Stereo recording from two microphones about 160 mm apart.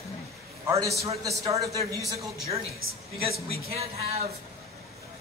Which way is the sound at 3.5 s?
40° right (ahead or behind).